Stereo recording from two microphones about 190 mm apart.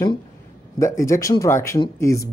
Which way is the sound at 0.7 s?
15° left (ahead or behind).